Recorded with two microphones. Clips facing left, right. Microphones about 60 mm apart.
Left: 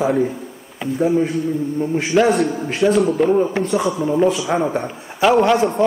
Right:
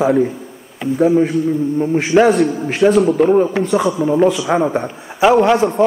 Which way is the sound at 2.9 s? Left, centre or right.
Centre.